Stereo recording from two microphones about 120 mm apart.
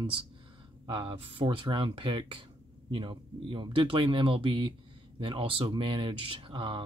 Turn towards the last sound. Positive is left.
turn(degrees=-45)  # may be behind; listen again after turning